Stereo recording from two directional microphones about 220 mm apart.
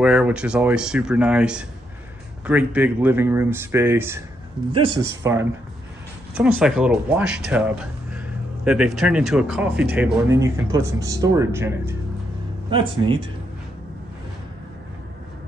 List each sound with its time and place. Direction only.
0.0 s speech: 5° right (ahead or behind)
5.2 s speech: 10° right (ahead or behind)
12.6 s speech: 25° right (ahead or behind)